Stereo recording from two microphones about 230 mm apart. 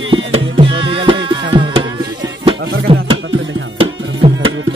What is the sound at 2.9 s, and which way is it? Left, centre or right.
Music, right.